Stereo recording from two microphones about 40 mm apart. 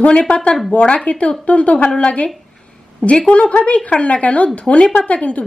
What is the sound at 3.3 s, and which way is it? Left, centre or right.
A woman's voice, left.